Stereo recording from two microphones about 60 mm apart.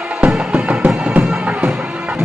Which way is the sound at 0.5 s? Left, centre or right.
Right.